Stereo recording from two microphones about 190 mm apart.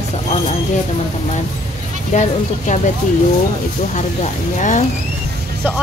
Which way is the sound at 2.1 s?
40° left (ahead or behind).